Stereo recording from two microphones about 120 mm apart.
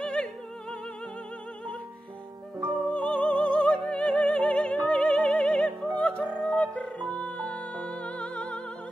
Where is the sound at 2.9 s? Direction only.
10° left (ahead or behind).